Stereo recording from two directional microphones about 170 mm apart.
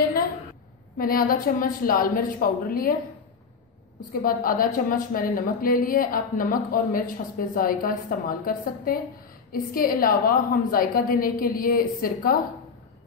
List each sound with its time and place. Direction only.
0.9 s a woman's voice: 60° left (ahead or behind)
4.1 s a woman's voice: 55° left (ahead or behind)